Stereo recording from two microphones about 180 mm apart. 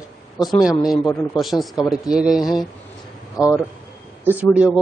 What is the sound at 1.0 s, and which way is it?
Speech, 20° left (ahead or behind).